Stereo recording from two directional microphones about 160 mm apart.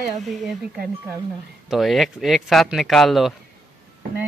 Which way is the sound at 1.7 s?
Centre (ahead or behind).